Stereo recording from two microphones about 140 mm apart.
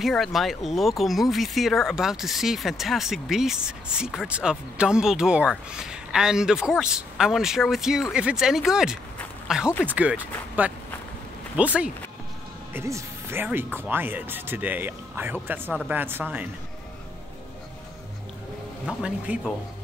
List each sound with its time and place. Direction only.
0.0 s speech: centre (ahead or behind)
18.9 s speech: 10° right (ahead or behind)